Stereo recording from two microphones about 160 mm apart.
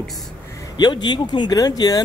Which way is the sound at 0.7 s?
25° left (ahead or behind).